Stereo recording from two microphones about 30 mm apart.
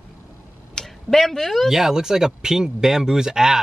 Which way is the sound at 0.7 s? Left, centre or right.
Centre.